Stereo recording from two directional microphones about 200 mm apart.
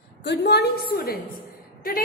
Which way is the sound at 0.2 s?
55° left (ahead or behind).